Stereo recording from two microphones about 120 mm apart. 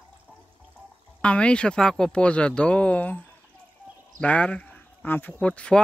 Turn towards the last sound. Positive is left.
turn(degrees=10)  # may be behind; listen again after turning